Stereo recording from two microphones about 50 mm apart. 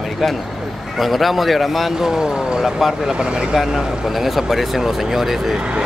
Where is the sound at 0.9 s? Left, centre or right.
Centre.